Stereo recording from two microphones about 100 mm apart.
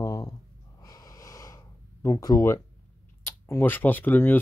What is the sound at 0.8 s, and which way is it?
Snort, 35° left (ahead or behind).